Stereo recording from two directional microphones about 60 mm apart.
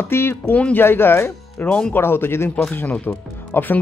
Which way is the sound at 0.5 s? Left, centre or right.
Left.